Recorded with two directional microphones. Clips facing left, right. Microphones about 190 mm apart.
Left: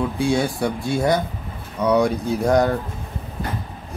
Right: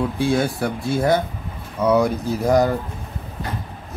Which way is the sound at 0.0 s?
Centre (ahead or behind).